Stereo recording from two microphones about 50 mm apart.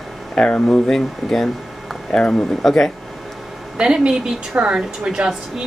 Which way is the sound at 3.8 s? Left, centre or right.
Centre.